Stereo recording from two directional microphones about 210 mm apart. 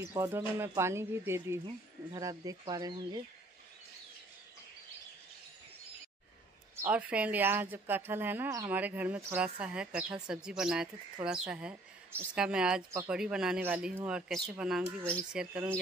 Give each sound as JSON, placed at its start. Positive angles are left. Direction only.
{"t": 0.1, "sound": "a woman's voice", "side_deg": -15}
{"t": 6.8, "sound": "a woman's voice", "side_deg": -5}